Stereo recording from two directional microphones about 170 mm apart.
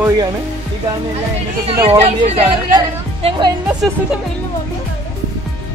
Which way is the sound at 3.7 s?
5° right (ahead or behind).